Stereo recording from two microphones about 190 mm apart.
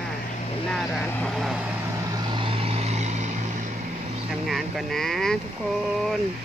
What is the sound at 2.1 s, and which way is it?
Vehicle, 25° right (ahead or behind).